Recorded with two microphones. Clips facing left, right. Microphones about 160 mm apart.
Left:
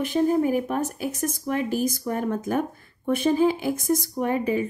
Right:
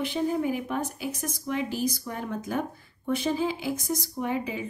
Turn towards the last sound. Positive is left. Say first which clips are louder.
# left 6 dB
turn(degrees=50)  # may be behind; listen again after turning